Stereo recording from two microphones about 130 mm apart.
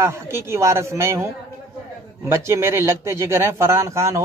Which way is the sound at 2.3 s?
20° right (ahead or behind).